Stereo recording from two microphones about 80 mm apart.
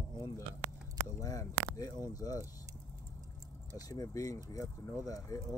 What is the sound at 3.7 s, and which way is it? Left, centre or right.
Speech, left.